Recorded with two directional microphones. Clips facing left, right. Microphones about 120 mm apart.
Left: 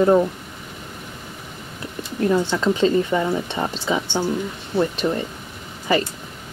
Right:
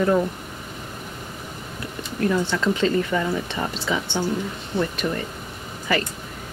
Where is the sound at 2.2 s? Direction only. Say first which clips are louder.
Left 3 dB; 20° left (ahead or behind).